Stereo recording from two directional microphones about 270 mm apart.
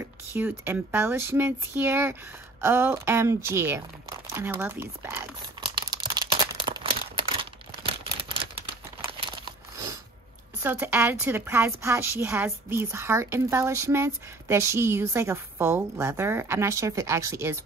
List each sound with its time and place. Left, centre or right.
0.3 s a woman's voice: centre
5.8 s crumpling: centre
7.8 s a sound: centre
10.6 s a woman's voice: centre